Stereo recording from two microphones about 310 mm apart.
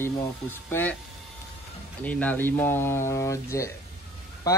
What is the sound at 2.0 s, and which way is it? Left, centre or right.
Speech, centre.